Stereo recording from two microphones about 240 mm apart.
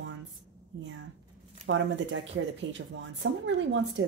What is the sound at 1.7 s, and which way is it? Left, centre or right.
Speech, right.